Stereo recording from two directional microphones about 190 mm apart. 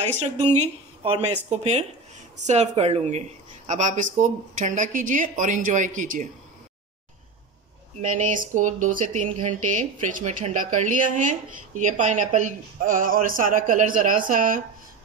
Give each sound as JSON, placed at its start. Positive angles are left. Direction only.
{"t": 0.4, "sound": "speech", "side_deg": -35}
{"t": 8.1, "sound": "speech", "side_deg": -45}